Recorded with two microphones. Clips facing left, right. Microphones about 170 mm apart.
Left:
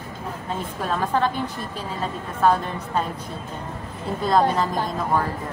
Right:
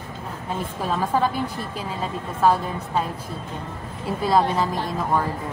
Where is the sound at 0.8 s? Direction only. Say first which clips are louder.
Even; 10° right (ahead or behind).